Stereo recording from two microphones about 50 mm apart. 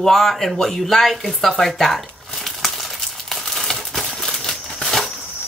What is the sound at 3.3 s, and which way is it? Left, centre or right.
Crumpling, centre.